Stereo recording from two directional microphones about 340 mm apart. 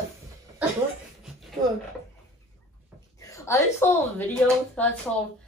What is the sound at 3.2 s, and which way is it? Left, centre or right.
Speech, centre.